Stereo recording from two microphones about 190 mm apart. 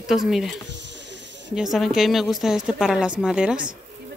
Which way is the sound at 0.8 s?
65° right (ahead or behind).